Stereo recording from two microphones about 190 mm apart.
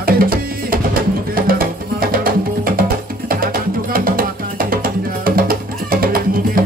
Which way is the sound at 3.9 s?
50° right (ahead or behind).